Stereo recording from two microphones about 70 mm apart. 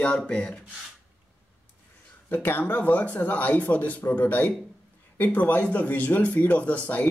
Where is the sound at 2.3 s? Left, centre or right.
Left.